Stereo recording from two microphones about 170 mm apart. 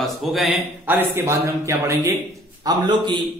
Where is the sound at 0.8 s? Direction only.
10° right (ahead or behind).